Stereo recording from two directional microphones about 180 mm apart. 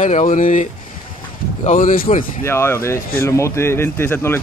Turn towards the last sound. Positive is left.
turn(degrees=15)  # may be behind; listen again after turning